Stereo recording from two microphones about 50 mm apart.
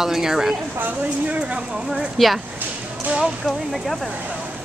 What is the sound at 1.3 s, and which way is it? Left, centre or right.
Speech, right.